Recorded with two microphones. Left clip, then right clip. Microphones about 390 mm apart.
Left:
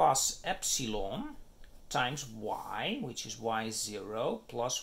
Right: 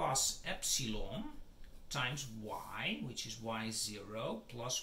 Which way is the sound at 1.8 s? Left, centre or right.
Centre.